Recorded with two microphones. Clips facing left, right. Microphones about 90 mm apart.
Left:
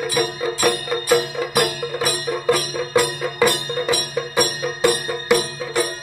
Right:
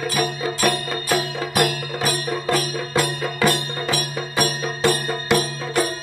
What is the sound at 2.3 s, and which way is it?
Music, 15° left (ahead or behind).